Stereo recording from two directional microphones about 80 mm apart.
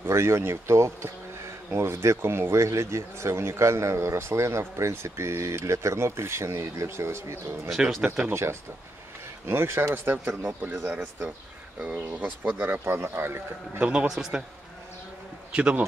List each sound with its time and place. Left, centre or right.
0.0 s speech: right
7.7 s speech: centre
8.3 s speech: right
11.8 s a man's voice: centre
12.5 s speech: right
13.8 s a man's voice: centre
15.5 s a man's voice: centre